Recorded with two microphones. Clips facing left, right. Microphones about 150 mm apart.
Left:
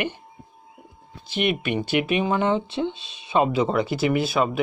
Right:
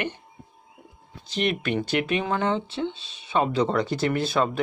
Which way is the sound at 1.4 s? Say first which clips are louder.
Left 1 dB; 5° left (ahead or behind).